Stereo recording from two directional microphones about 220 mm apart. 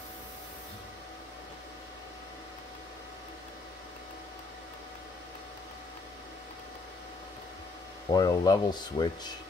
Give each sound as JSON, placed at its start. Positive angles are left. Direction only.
{"t": 8.1, "sound": "speech", "side_deg": 20}